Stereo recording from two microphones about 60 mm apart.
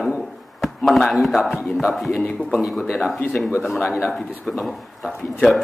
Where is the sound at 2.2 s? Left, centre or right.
Centre.